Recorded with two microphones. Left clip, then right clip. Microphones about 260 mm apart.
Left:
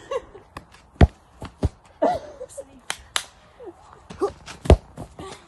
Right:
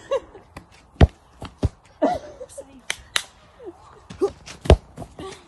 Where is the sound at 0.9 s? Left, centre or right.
Centre.